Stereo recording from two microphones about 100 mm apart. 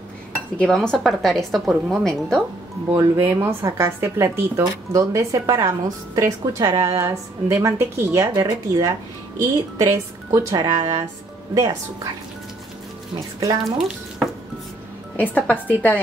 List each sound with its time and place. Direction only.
0.6 s a woman's voice: 5° left (ahead or behind)
2.9 s a woman's voice: 25° right (ahead or behind); by 6.8 s 40° right (ahead or behind)
6.8 s a woman's voice: 30° right (ahead or behind)
9.9 s a woman's voice: 30° right (ahead or behind)
13.4 s a woman's voice: 40° right (ahead or behind)
13.7 s speech: 5° right (ahead or behind)
15.1 s a woman's voice: 15° left (ahead or behind)